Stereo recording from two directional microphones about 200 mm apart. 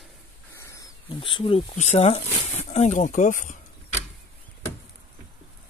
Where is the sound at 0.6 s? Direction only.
15° left (ahead or behind); by 3.5 s 40° left (ahead or behind).